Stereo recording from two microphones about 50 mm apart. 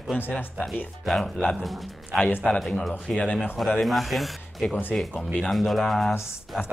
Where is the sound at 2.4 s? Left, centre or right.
Centre.